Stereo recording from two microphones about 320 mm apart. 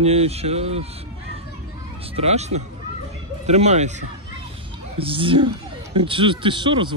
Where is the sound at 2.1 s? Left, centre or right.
Centre.